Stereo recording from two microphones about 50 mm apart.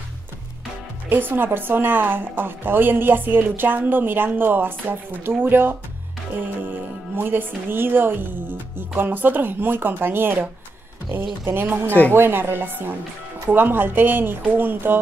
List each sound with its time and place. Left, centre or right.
1.0 s speech: right
7.2 s speech: right